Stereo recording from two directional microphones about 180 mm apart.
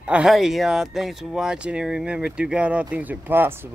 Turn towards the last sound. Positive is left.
turn(degrees=-10)  # may be behind; listen again after turning